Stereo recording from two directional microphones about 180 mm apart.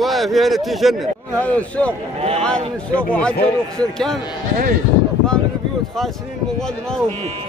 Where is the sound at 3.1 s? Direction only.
5° left (ahead or behind).